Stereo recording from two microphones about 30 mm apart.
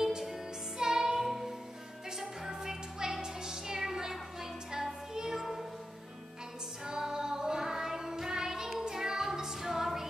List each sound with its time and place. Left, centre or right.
0.7 s music: centre
6.9 s child singing: centre
8.8 s music: centre